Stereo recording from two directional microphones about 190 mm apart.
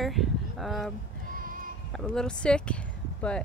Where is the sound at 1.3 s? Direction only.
45° right (ahead or behind).